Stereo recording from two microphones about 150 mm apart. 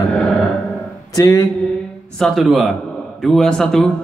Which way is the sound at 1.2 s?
20° left (ahead or behind).